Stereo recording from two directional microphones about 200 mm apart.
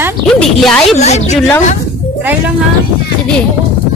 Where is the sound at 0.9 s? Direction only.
35° left (ahead or behind).